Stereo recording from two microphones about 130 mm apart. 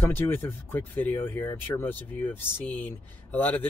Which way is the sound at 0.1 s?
15° left (ahead or behind).